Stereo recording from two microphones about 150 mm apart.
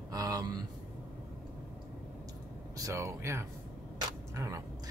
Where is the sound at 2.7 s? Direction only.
20° right (ahead or behind).